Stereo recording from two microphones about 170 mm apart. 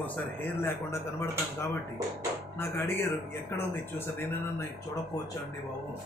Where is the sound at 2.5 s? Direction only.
15° left (ahead or behind).